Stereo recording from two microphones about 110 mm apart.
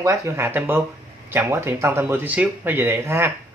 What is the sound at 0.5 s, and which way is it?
Speech, 20° right (ahead or behind).